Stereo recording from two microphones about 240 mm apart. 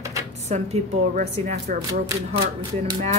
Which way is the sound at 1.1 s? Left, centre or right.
Right.